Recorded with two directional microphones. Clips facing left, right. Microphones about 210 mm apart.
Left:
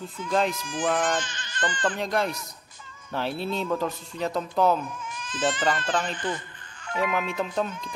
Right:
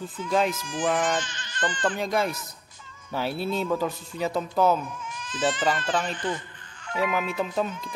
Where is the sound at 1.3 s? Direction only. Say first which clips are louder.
Left 1 dB; 50° left (ahead or behind).